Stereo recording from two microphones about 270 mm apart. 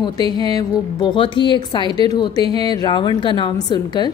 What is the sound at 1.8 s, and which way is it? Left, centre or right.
Speech, centre.